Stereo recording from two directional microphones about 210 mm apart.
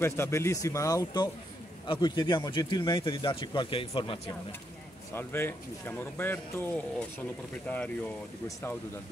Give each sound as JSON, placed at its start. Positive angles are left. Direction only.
{"t": 0.0, "sound": "a man's voice", "side_deg": 10}
{"t": 5.1, "sound": "a man's voice", "side_deg": 10}